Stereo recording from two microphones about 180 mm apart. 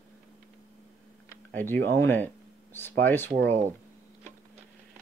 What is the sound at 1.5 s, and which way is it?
Speech, 10° left (ahead or behind).